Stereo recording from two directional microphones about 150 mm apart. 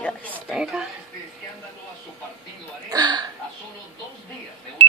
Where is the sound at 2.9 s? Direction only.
25° right (ahead or behind).